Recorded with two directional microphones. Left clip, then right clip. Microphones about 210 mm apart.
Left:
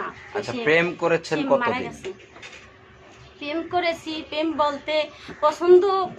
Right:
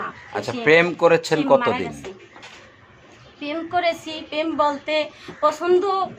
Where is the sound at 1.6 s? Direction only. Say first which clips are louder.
Right 2 dB; 5° left (ahead or behind).